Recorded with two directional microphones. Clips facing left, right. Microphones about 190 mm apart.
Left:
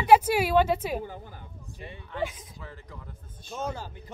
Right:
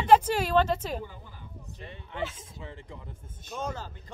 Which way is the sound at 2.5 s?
25° right (ahead or behind).